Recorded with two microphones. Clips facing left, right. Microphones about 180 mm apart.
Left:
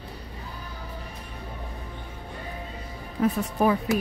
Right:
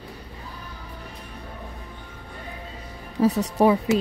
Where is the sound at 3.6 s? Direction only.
20° right (ahead or behind).